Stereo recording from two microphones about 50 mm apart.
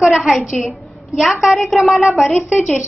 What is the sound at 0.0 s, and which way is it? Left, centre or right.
A woman's voice, centre.